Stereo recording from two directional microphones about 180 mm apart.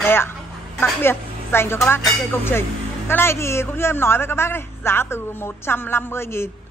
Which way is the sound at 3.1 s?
15° left (ahead or behind).